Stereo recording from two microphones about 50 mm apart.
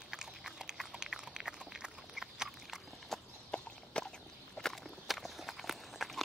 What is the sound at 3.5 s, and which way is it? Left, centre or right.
Walk, centre.